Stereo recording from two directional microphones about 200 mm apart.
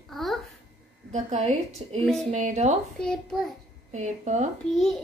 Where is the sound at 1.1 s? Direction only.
35° right (ahead or behind).